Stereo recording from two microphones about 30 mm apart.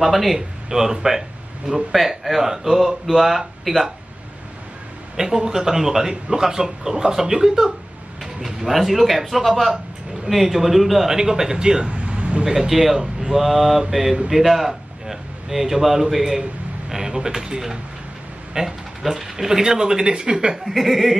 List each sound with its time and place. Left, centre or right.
0.0 s a man's voice: centre
0.7 s speech: centre
1.9 s speech: centre
5.1 s speech: centre
8.5 s a man's voice: centre
11.9 s a sound: right
12.4 s speech: centre
16.9 s speech: right
20.6 s a man's voice: centre